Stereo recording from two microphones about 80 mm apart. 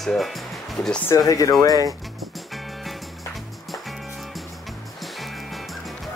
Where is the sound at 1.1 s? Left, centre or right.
Left.